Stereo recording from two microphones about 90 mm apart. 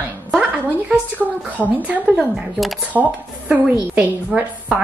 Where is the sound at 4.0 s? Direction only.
20° right (ahead or behind).